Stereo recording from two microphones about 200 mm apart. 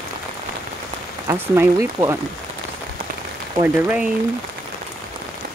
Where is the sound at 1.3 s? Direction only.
15° right (ahead or behind).